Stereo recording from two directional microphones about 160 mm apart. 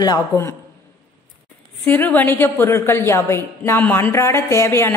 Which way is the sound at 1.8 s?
10° left (ahead or behind).